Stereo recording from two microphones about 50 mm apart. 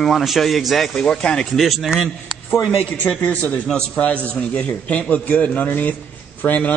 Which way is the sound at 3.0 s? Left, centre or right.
Left.